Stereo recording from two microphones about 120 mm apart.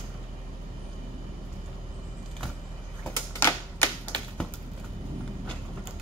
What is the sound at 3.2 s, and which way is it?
Typewriter, 20° left (ahead or behind).